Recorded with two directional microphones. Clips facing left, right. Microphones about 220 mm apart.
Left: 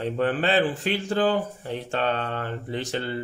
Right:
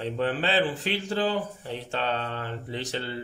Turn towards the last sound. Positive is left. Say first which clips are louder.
# left 4 dB
turn(degrees=50)  # may be behind; listen again after turning